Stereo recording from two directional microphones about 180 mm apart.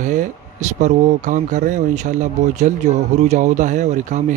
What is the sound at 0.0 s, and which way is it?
Speech, 45° right (ahead or behind).